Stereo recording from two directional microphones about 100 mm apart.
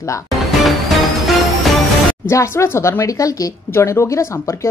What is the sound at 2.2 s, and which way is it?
A woman's voice, 25° left (ahead or behind).